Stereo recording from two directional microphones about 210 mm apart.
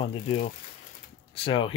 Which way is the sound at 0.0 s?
25° left (ahead or behind).